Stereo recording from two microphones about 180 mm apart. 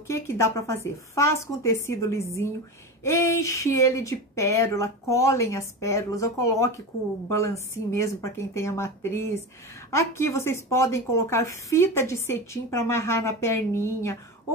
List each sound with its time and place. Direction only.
0.1 s speech: 15° left (ahead or behind)